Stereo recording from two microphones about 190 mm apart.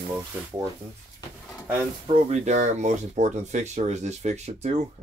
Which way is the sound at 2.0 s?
35° right (ahead or behind).